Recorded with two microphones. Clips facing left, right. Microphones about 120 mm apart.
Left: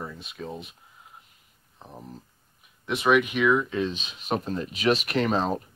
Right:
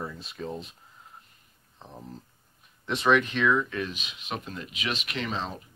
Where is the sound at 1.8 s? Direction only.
10° left (ahead or behind).